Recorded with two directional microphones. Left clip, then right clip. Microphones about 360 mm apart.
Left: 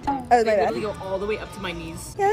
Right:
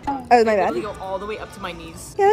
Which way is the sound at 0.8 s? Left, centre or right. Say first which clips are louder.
Right 1 dB; centre.